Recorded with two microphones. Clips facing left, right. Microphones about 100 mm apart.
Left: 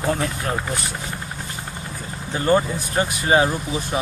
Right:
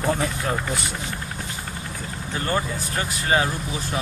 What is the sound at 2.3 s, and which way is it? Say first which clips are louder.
Speech: left 7 dB; 20° left (ahead or behind).